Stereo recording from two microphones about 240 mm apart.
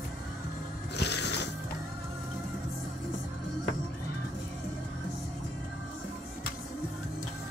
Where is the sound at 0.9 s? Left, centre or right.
Left.